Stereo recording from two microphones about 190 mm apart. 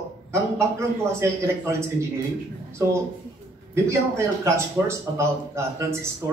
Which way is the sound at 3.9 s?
15° right (ahead or behind).